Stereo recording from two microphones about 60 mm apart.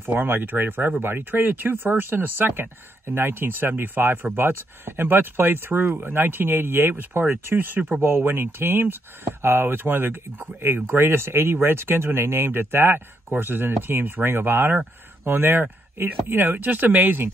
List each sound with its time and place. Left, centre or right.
0.0 s speech: right